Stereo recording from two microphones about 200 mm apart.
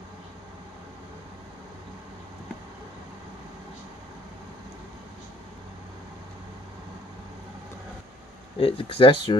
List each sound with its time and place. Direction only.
8.5 s speech: 25° left (ahead or behind)